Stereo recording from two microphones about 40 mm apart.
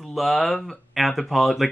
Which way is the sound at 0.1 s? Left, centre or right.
Centre.